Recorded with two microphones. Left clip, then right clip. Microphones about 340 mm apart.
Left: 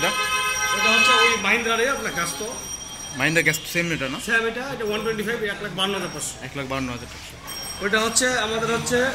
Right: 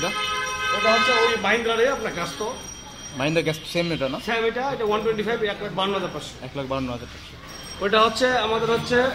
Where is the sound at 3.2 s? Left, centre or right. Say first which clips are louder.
Left 3 dB; centre.